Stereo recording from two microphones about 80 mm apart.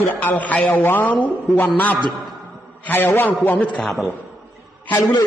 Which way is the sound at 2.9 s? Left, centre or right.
Left.